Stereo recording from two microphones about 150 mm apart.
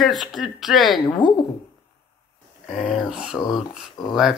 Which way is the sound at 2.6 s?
Centre (ahead or behind).